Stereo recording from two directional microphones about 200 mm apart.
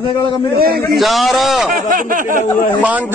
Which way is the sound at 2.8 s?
5° right (ahead or behind).